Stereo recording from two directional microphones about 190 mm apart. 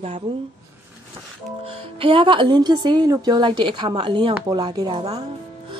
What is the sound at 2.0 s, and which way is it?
A woman's voice, 30° right (ahead or behind).